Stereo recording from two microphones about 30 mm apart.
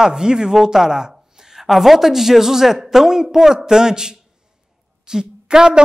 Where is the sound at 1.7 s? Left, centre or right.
Centre; by 5.8 s right.